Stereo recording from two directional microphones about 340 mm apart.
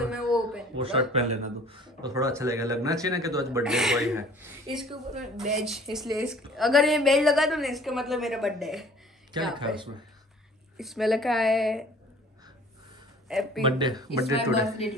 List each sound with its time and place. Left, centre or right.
0.1 s a sound: centre
0.7 s a woman's voice: centre
9.3 s speech: centre
10.8 s a woman's voice: centre
13.6 s speech: centre
14.3 s speech: centre